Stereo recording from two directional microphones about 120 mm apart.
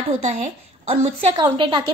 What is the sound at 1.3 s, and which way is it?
Speech, 40° right (ahead or behind).